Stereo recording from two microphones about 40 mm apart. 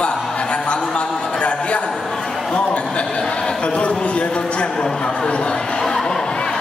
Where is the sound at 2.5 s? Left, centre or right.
Left.